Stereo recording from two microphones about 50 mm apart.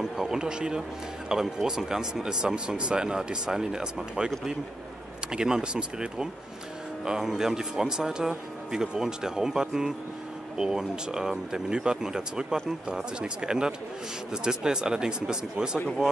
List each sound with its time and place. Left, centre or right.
0.0 s a man's voice: centre
5.3 s speech: centre